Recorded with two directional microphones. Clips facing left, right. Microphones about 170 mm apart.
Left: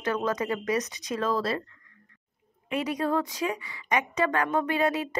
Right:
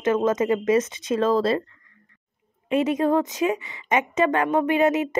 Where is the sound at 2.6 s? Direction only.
25° right (ahead or behind).